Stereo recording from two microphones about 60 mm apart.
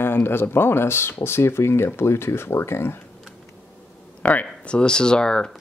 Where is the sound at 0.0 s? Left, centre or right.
Left.